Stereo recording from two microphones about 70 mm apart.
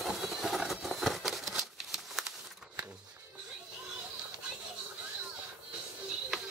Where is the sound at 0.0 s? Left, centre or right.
Centre.